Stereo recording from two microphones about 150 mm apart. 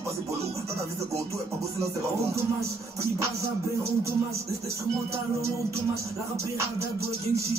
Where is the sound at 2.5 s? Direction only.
20° right (ahead or behind).